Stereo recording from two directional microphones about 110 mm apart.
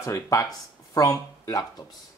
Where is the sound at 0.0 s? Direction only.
30° left (ahead or behind).